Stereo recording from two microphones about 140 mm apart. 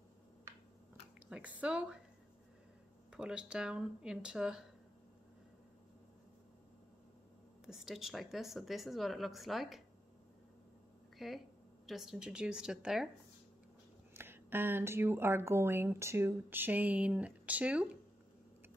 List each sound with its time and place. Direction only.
1.3 s speech: 10° right (ahead or behind)
3.1 s speech: 5° right (ahead or behind)
7.6 s speech: 5° right (ahead or behind)
11.1 s speech: centre (ahead or behind)
14.1 s speech: 15° right (ahead or behind)